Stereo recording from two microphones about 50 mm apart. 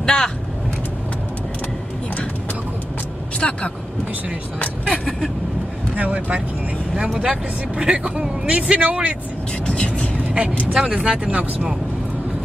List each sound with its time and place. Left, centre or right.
0.0 s vehicle: centre
3.3 s vehicle: left
5.9 s speech: right
7.0 s speech: centre
9.7 s speech: left
10.3 s speech: right